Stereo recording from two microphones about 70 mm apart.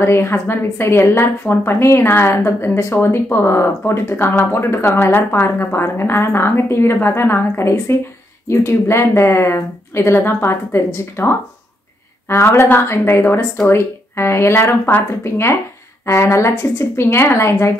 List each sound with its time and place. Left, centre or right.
0.0 s speech: left